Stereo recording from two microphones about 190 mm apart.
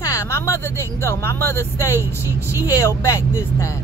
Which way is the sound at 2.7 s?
15° left (ahead or behind).